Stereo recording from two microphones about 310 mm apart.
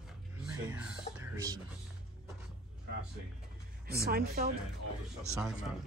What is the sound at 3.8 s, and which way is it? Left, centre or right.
Speech, right.